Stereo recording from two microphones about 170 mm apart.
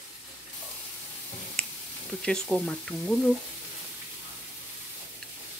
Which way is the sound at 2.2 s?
5° left (ahead or behind).